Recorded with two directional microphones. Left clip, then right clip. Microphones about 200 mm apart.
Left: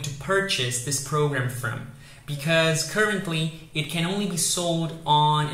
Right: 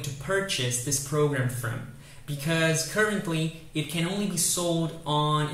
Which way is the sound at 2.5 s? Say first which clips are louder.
Left 4 dB; 10° right (ahead or behind).